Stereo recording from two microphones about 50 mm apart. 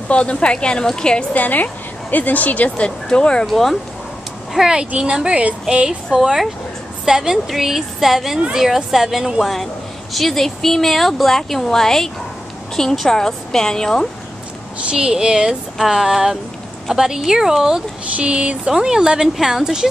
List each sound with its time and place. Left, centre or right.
0.1 s a woman's voice: left
1.3 s a woman's voice: left
3.1 s a woman's voice: centre
3.4 s a woman's voice: centre
4.6 s speech: centre
6.1 s a woman's voice: centre
14.9 s speech: centre
18.1 s speech: right
18.7 s speech: centre